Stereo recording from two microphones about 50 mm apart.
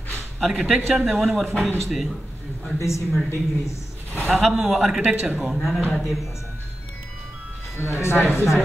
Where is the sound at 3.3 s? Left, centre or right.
Left.